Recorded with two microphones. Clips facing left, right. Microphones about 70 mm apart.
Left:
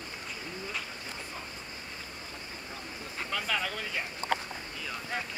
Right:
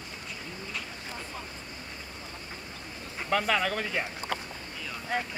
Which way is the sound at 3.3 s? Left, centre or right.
Right.